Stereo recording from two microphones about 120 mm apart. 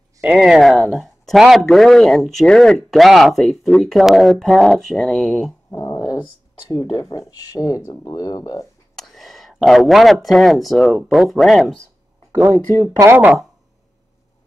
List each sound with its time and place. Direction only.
0.2 s speech: 5° right (ahead or behind)
5.7 s dog: 25° left (ahead or behind)
6.9 s speech: 40° left (ahead or behind)
8.9 s a sound: centre (ahead or behind)
10.2 s speech: centre (ahead or behind)
12.4 s speech: 15° right (ahead or behind)